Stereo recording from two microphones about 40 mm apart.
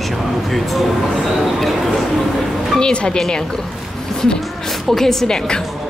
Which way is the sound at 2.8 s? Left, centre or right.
Left.